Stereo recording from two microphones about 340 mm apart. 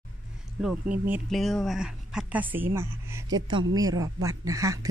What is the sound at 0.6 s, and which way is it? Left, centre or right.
A woman's voice, centre.